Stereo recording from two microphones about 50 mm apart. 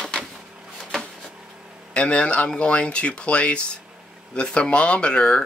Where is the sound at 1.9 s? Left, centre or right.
Left.